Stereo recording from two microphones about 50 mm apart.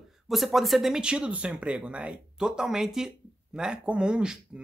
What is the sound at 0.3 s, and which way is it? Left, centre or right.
Speech, centre.